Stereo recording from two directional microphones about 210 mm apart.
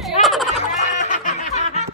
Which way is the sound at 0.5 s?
35° left (ahead or behind).